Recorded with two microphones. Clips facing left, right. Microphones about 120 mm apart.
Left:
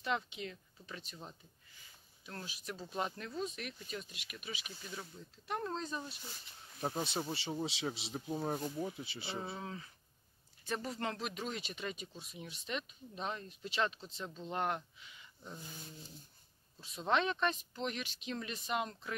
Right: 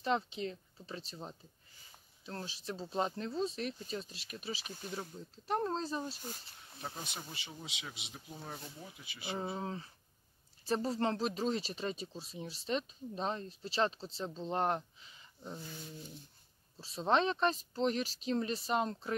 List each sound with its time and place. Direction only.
0.0 s speech: 35° right (ahead or behind)
6.8 s speech: 30° left (ahead or behind)
8.8 s speech: 30° left (ahead or behind)
9.4 s speech: 35° right (ahead or behind)
16.7 s speech: 30° right (ahead or behind)